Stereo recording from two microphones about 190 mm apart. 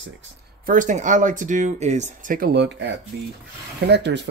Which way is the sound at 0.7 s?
40° right (ahead or behind).